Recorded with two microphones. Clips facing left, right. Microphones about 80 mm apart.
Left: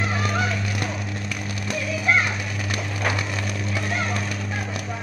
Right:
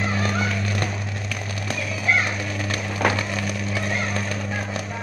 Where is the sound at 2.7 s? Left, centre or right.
Right.